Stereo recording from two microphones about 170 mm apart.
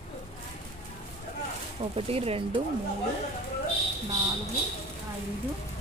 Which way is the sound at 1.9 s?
35° right (ahead or behind).